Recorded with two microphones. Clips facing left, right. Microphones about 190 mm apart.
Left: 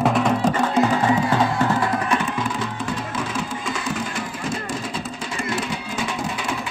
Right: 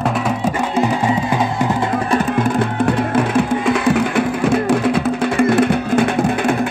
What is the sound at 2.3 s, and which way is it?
Music, 55° right (ahead or behind).